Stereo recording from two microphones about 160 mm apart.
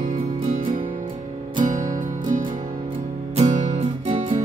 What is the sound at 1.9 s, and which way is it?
Music, 55° right (ahead or behind).